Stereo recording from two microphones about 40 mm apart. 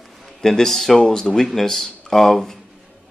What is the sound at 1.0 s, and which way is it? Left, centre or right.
Speech, centre.